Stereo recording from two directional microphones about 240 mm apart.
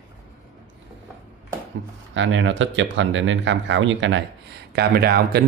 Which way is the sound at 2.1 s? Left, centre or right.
Right.